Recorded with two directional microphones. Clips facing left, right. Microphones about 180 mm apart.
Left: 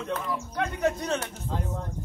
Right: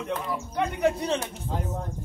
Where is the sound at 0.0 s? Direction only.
15° right (ahead or behind).